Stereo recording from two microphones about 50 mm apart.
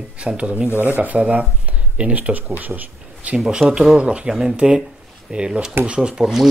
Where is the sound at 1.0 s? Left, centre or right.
Right.